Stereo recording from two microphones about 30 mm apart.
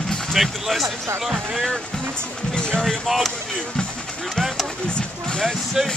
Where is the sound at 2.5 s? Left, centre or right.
Left.